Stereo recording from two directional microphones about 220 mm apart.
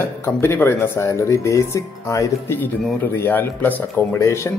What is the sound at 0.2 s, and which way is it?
Speech, 10° left (ahead or behind).